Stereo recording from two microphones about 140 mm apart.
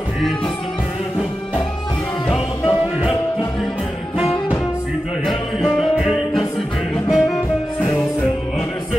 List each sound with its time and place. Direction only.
2.2 s music: 40° left (ahead or behind)
4.2 s music: 40° left (ahead or behind)
5.2 s music: centre (ahead or behind)
7.1 s music: centre (ahead or behind)